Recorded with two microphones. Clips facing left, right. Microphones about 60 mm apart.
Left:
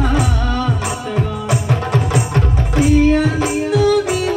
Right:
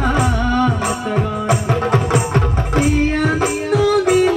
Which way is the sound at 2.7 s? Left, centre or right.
Right.